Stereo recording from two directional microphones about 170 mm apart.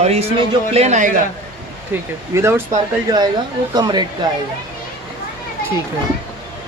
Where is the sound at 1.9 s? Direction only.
15° right (ahead or behind).